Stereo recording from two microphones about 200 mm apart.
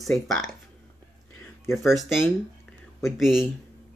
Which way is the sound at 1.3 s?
10° left (ahead or behind).